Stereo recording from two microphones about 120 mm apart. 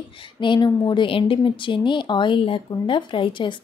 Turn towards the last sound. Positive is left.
turn(degrees=40)  # may be behind; listen again after turning